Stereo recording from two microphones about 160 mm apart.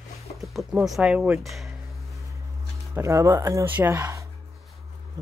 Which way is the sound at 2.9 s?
20° right (ahead or behind).